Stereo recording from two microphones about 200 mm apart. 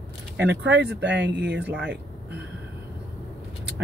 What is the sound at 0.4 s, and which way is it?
Speech, 60° right (ahead or behind).